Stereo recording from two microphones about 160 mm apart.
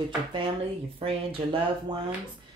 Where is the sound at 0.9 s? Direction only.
35° right (ahead or behind).